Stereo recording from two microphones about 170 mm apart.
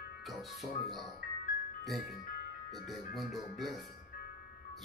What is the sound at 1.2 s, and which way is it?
Music, 60° left (ahead or behind).